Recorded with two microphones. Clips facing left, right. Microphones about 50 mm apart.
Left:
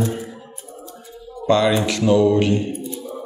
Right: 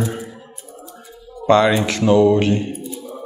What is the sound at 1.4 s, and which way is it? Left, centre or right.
Speech, right.